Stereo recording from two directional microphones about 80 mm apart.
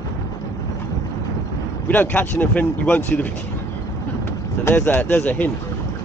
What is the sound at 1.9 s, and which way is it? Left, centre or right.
Speech, left.